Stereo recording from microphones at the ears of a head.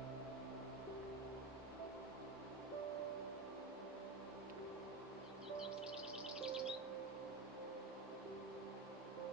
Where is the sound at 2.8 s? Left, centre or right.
Right.